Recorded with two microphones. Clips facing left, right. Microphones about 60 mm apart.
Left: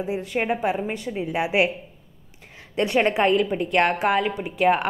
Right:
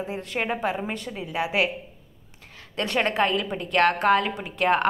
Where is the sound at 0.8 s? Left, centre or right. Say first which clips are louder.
Left 3 dB; centre.